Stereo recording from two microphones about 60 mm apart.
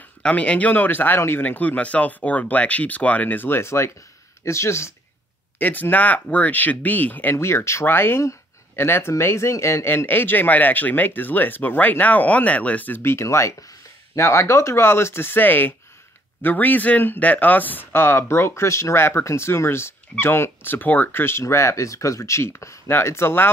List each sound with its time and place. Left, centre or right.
0.2 s speech: left
5.6 s speech: left
7.3 s speech: left
22.8 s speech: left